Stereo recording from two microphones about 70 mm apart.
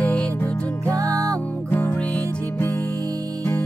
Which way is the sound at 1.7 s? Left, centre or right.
Left.